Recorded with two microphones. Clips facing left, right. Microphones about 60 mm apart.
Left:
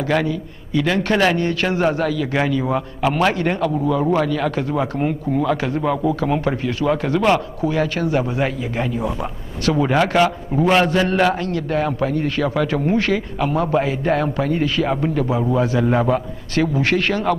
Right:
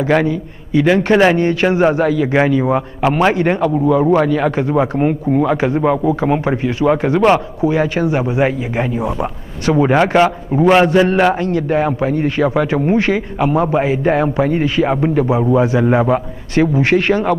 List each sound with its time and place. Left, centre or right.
0.0 s a man's voice: right